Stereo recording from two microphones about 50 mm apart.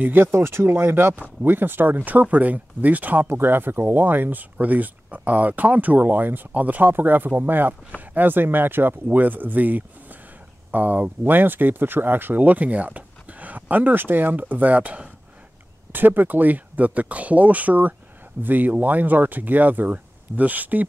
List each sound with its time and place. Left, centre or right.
0.0 s speech: right
0.3 s speech: right
3.3 s speech: right
15.9 s speech: right